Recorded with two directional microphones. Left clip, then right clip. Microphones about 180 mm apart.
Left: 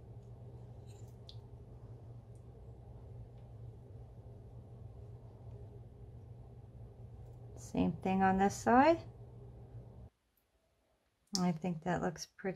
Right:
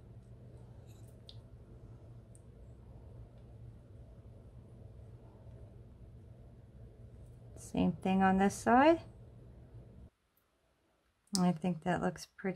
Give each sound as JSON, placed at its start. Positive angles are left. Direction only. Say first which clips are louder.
{"t": 7.5, "sound": "a woman's voice", "louder": "right 1 dB", "side_deg": -15}
{"t": 11.3, "sound": "a woman's voice", "louder": "right 3 dB", "side_deg": -15}